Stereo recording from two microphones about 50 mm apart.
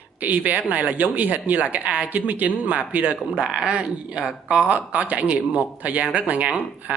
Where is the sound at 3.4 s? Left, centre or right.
Centre.